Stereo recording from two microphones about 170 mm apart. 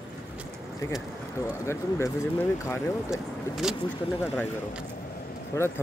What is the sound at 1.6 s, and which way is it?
Speech, 15° left (ahead or behind).